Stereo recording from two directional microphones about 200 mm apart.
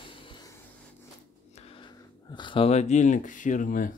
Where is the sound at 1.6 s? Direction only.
25° left (ahead or behind).